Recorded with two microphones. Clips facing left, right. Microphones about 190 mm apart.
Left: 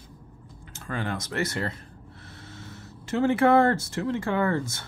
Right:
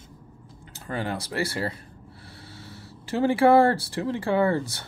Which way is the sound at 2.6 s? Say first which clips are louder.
Even; 35° right (ahead or behind).